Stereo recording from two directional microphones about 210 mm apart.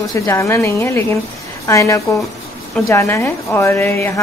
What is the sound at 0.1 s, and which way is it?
A woman's voice, 15° left (ahead or behind).